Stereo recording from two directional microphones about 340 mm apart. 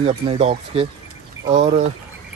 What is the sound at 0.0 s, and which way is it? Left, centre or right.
Speech, centre.